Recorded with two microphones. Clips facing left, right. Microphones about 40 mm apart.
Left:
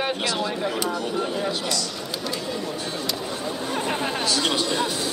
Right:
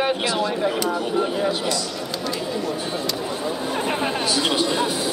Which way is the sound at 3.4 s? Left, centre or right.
Centre.